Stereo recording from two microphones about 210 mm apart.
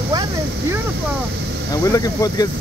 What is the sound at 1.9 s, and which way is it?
Speech, 15° left (ahead or behind).